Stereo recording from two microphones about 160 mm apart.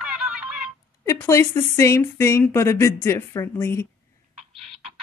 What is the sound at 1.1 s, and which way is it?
Speech, 20° left (ahead or behind).